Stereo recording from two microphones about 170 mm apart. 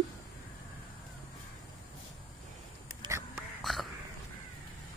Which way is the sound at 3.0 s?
15° right (ahead or behind).